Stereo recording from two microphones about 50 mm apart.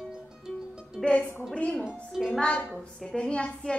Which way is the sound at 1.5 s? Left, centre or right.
Left.